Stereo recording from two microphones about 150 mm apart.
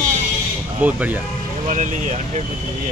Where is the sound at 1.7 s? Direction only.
55° right (ahead or behind).